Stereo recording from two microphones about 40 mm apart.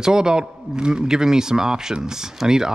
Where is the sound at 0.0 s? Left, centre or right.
Centre.